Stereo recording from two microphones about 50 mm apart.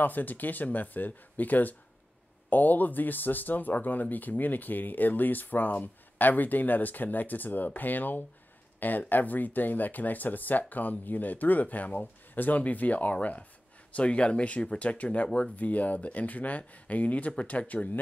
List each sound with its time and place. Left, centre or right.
0.0 s speech: left; by 15.5 s centre
15.5 s speech: left